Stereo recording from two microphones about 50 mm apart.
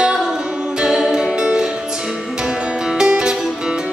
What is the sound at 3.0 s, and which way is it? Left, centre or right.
Music, centre.